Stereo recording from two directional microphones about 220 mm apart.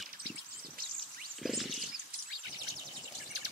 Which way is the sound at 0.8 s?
40° right (ahead or behind).